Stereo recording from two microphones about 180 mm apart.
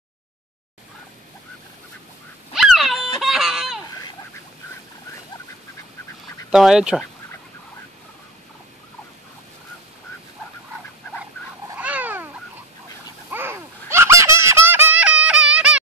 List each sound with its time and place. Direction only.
2.5 s a sound: centre (ahead or behind)
6.5 s speech: 5° right (ahead or behind)
11.8 s cat: 10° right (ahead or behind)
13.3 s baby laughter: 15° right (ahead or behind)